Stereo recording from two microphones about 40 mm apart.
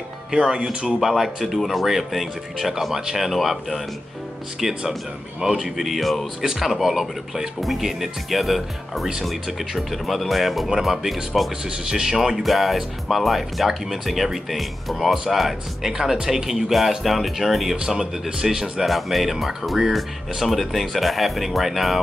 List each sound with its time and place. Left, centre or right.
0.3 s speech: centre
1.0 s speech: centre
12.4 s speech: centre
17.8 s speech: centre
18.8 s speech: centre